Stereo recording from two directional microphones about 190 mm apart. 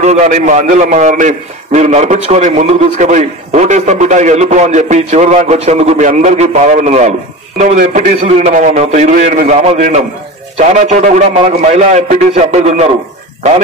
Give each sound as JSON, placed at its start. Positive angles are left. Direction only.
{"t": 0.0, "sound": "a man's voice", "side_deg": -35}